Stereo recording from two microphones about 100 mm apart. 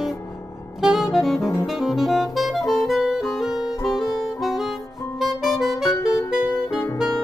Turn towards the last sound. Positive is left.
turn(degrees=-5)  # may be behind; listen again after turning